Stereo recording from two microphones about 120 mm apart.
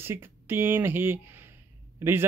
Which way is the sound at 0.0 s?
20° right (ahead or behind).